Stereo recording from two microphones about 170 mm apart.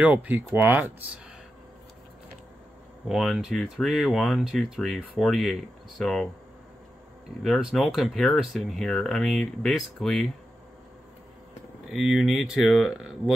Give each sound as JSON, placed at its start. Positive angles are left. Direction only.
{"t": 0.0, "sound": "speech", "side_deg": -10}
{"t": 3.1, "sound": "speech", "side_deg": 0}
{"t": 7.4, "sound": "speech", "side_deg": 0}
{"t": 11.9, "sound": "speech", "side_deg": 0}